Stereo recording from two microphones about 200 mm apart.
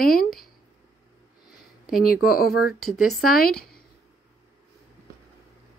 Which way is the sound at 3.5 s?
5° left (ahead or behind).